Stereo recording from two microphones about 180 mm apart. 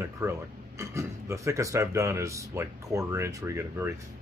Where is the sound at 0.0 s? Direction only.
15° right (ahead or behind).